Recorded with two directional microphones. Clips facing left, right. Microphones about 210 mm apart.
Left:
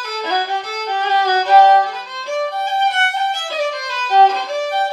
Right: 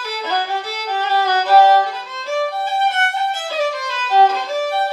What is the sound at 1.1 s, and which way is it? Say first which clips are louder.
Violin: left 1 dB; 5° right (ahead or behind).